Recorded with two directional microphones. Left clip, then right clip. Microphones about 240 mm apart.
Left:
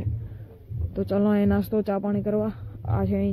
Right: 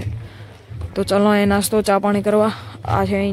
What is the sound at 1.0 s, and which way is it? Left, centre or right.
A man's voice, centre.